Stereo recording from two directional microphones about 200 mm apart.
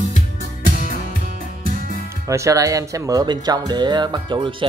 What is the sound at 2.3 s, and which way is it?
Speech, 15° right (ahead or behind).